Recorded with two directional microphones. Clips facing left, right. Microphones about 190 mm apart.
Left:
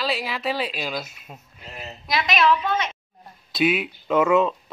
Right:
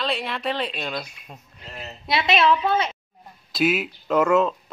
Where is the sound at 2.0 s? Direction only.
25° right (ahead or behind).